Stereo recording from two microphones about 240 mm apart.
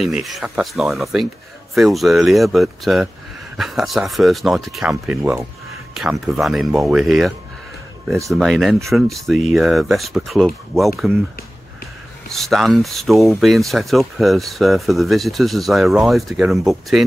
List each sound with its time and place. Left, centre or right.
0.0 s speech: centre
12.3 s speech: centre